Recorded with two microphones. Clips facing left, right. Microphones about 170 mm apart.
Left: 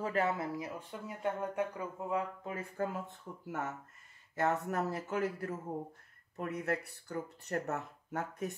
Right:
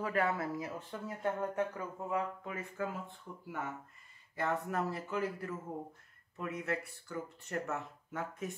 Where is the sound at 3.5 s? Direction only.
45° left (ahead or behind).